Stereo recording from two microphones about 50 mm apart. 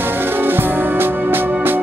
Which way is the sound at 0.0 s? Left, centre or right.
Right.